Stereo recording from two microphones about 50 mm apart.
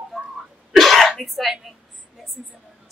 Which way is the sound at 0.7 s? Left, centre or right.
Centre.